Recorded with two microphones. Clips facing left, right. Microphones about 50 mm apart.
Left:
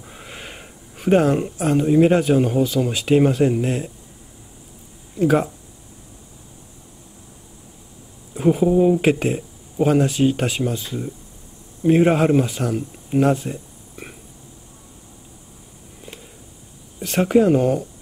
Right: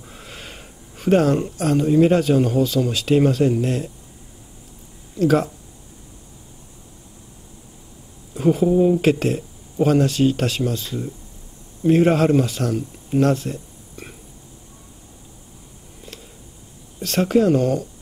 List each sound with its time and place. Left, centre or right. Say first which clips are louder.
0.0 s speech: left 1 dB; centre
5.1 s speech: even; centre
8.4 s speech: even; centre
17.0 s speech: left 1 dB; centre